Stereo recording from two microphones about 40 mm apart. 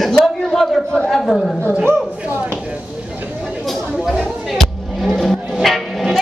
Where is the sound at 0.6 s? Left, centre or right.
Centre.